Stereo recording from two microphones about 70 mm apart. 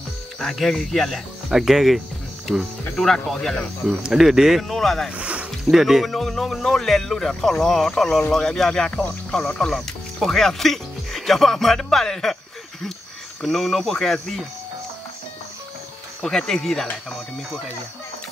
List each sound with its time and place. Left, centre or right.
0.4 s speech: centre
3.8 s speech: centre
5.1 s speech: centre
5.7 s speech: centre
9.7 s speech: centre
13.4 s speech: centre
16.2 s speech: centre